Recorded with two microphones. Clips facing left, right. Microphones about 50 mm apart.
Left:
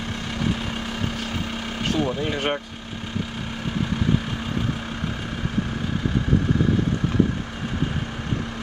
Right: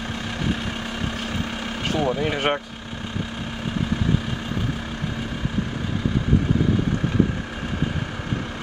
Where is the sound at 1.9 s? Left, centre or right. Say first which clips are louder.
Right 2 dB; centre.